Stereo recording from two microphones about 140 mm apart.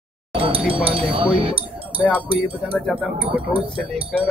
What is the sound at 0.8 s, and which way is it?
Speech, 40° right (ahead or behind).